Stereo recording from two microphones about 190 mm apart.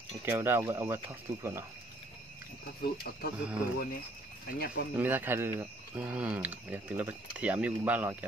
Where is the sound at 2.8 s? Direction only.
50° left (ahead or behind).